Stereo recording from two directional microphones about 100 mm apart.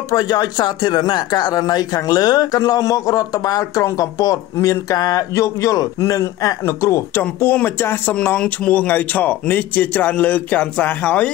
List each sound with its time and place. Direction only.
0.1 s speech: 40° left (ahead or behind); by 11.2 s 15° left (ahead or behind)